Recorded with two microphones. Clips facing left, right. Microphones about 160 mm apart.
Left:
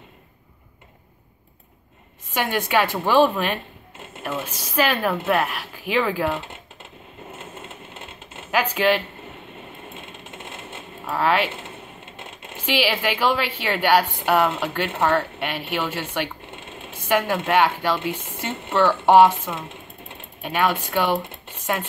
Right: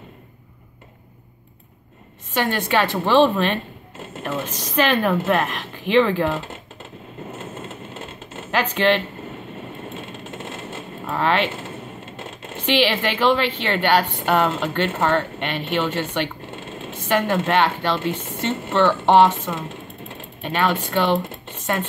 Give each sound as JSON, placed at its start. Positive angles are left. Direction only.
{"t": 2.3, "sound": "a woman's voice", "side_deg": 10}
{"t": 8.5, "sound": "a woman's voice", "side_deg": 10}
{"t": 10.3, "sound": "vehicle", "side_deg": -50}
{"t": 11.1, "sound": "a woman's voice", "side_deg": 5}
{"t": 12.5, "sound": "a woman's voice", "side_deg": 10}